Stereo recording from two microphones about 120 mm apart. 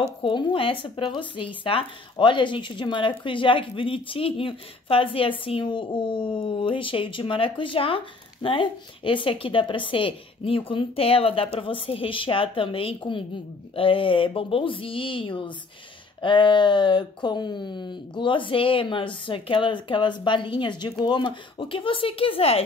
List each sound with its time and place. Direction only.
0.2 s speech: 40° left (ahead or behind)